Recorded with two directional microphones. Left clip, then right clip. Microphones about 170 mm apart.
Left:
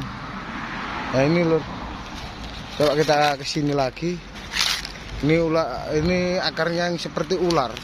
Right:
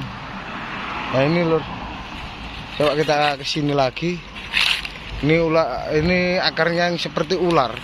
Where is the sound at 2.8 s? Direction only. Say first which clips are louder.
Right 1 dB; 10° left (ahead or behind).